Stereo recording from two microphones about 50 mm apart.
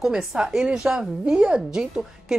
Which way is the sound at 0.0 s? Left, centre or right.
Centre.